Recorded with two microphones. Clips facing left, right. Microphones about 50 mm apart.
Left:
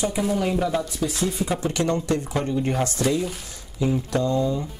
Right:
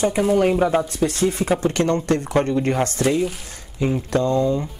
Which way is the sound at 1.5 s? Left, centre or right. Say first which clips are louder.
Right 4 dB; right.